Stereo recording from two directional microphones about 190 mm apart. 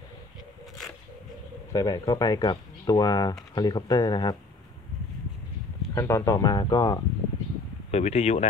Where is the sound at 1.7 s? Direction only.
20° left (ahead or behind).